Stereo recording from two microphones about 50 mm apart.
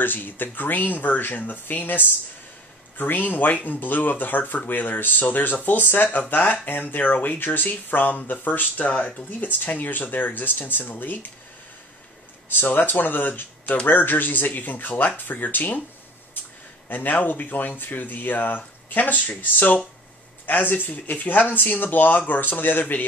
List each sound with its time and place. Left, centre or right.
0.0 s speech: left
12.4 s speech: left
16.9 s speech: left